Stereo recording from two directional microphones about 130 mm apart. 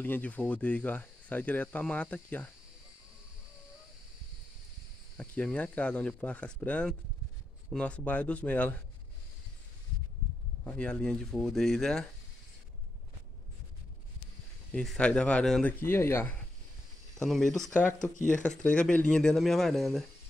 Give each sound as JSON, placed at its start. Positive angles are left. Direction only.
{"t": 0.0, "sound": "speech", "side_deg": 15}
{"t": 5.1, "sound": "speech", "side_deg": 10}
{"t": 10.6, "sound": "speech", "side_deg": 10}
{"t": 14.7, "sound": "speech", "side_deg": 5}
{"t": 15.8, "sound": "speech", "side_deg": 20}
{"t": 17.2, "sound": "speech", "side_deg": 5}
{"t": 17.6, "sound": "speech", "side_deg": 15}